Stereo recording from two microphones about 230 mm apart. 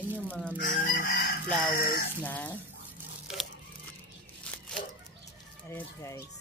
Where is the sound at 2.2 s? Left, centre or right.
Centre.